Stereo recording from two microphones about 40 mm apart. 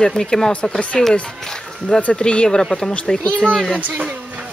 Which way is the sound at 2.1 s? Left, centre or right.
Left.